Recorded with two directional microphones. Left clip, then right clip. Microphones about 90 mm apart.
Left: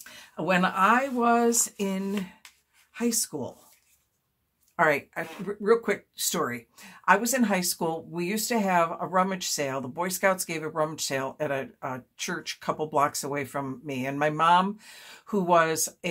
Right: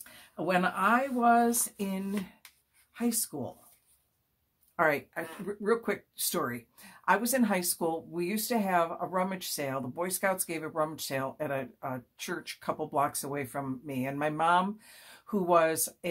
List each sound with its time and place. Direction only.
0.1 s speech: 20° left (ahead or behind)
4.7 s speech: 25° left (ahead or behind)